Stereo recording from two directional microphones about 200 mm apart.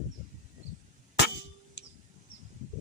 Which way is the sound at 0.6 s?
35° right (ahead or behind).